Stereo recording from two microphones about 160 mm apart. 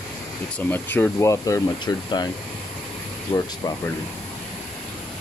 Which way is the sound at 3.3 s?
35° left (ahead or behind).